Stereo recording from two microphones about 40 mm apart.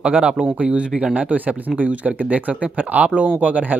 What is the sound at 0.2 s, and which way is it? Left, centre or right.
Speech, right.